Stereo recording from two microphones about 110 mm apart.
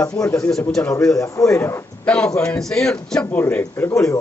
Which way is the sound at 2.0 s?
10° left (ahead or behind).